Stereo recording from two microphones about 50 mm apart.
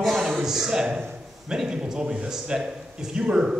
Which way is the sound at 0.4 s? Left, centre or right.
Centre.